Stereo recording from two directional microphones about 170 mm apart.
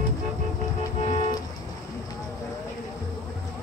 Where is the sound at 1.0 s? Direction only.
40° left (ahead or behind).